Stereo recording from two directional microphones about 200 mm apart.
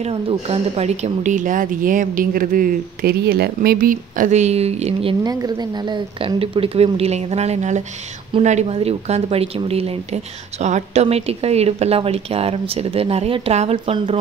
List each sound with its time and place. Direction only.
0.0 s speech: 30° right (ahead or behind)
5.2 s a woman's voice: 20° right (ahead or behind)